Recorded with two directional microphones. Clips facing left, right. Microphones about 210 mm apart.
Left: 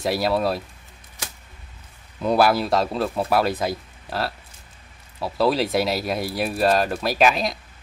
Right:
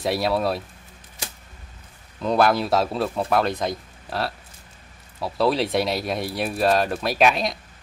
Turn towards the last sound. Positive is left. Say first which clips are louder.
# even
turn(degrees=0)  # may be behind; listen again after turning